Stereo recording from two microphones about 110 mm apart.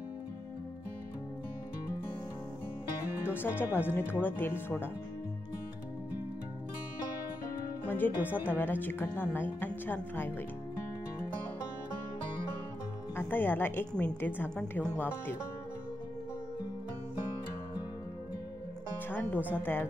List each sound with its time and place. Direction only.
3.3 s speech: 20° left (ahead or behind)
8.2 s a woman's voice: 15° right (ahead or behind)
8.5 s speech: 20° left (ahead or behind)
13.1 s a woman's voice: 20° left (ahead or behind)
19.0 s a woman's voice: 15° left (ahead or behind)